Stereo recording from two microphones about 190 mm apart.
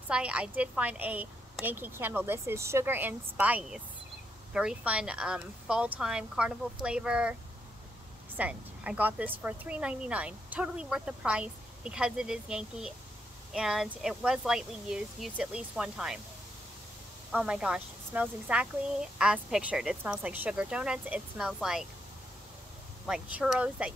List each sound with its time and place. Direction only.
0.1 s a woman's voice: 5° right (ahead or behind)
8.4 s a woman's voice: 10° right (ahead or behind)
17.3 s speech: 5° right (ahead or behind)
23.0 s speech: 5° right (ahead or behind)